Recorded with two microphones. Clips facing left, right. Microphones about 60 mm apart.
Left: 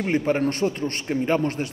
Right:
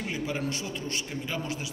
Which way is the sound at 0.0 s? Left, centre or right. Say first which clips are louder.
Left 10 dB; left.